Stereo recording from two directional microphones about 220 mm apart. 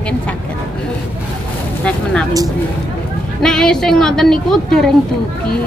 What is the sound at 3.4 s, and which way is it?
A woman's voice, 5° left (ahead or behind).